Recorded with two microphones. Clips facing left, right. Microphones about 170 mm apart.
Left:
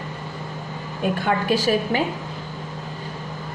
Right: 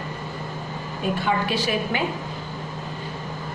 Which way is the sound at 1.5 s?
45° left (ahead or behind).